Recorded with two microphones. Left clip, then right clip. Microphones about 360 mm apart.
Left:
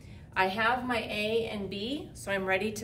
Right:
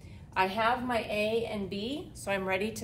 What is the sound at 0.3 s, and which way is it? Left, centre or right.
A woman's voice, centre.